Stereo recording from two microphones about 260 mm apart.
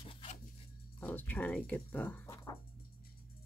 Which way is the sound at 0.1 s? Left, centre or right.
Left.